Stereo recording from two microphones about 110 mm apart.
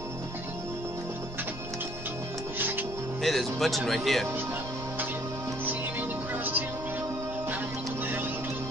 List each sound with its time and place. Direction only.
3.2 s speech: centre (ahead or behind)
5.7 s music: 15° right (ahead or behind)